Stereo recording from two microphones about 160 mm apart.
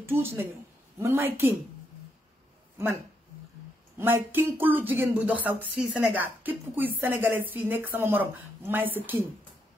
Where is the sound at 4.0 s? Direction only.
15° right (ahead or behind).